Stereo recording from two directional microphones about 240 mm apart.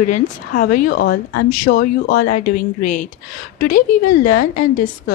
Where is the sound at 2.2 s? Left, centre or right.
Left.